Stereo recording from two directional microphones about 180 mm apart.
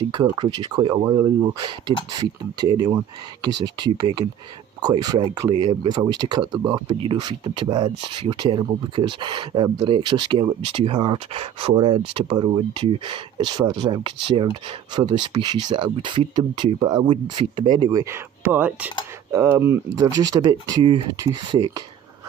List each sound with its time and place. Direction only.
0.1 s speech: 25° right (ahead or behind)